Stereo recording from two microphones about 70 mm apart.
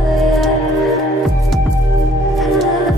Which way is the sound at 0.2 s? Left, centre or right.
Centre.